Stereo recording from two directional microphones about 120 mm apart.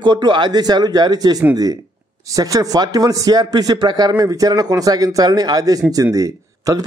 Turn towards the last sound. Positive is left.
turn(degrees=-30)  # may be behind; listen again after turning